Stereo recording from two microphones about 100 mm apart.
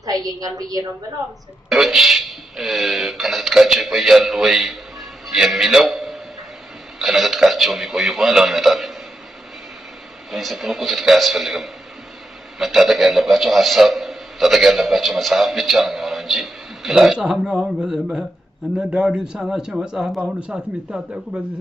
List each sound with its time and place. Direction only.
0.0 s a woman's voice: 40° right (ahead or behind)
1.7 s a man's voice: 5° right (ahead or behind)
10.3 s a man's voice: centre (ahead or behind)